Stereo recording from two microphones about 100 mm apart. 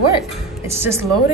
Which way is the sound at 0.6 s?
25° right (ahead or behind).